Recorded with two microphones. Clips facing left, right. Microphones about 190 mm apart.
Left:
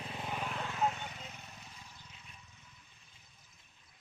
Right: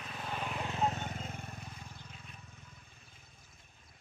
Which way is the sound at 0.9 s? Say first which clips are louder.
Right 4 dB; 45° right (ahead or behind).